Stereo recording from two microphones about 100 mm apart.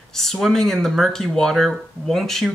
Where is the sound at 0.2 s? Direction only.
5° left (ahead or behind).